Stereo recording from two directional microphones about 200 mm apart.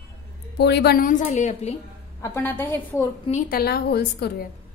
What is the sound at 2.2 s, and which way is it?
Speech, 10° left (ahead or behind).